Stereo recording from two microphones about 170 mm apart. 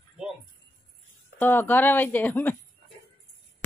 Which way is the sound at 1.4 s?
10° left (ahead or behind).